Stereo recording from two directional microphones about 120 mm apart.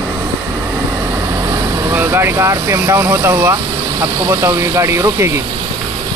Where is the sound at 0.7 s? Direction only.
20° right (ahead or behind).